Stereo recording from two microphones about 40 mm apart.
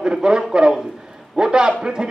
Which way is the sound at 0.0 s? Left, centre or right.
Right.